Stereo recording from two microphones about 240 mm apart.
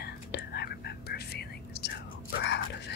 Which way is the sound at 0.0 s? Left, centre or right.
Left.